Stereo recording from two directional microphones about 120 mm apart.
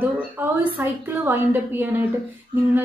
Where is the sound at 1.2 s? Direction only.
15° right (ahead or behind).